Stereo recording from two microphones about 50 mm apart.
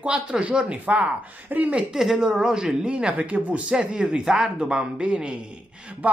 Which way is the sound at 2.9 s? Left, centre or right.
Right.